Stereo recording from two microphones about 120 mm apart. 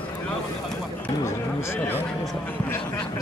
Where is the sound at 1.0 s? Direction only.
20° left (ahead or behind).